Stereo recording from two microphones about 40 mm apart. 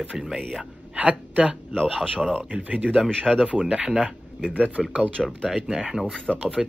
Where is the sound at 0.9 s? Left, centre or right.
Right.